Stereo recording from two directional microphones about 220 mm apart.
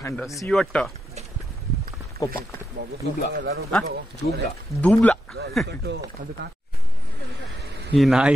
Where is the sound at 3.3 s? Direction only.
45° right (ahead or behind).